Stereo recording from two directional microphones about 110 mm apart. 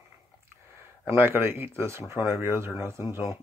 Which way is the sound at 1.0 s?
20° right (ahead or behind).